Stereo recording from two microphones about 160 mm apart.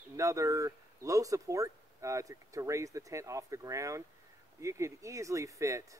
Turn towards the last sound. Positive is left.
turn(degrees=-20)  # may be behind; listen again after turning